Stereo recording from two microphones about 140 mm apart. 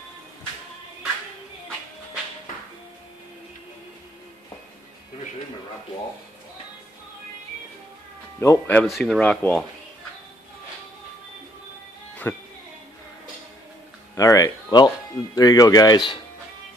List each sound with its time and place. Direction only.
8.4 s speech: 15° left (ahead or behind)
8.8 s speech: centre (ahead or behind)
12.2 s speech: 15° left (ahead or behind)
14.1 s speech: 25° left (ahead or behind)